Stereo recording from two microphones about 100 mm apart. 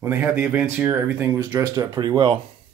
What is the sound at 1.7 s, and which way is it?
Speech, 45° right (ahead or behind).